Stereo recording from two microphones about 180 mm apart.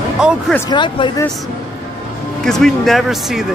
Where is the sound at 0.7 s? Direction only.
25° left (ahead or behind).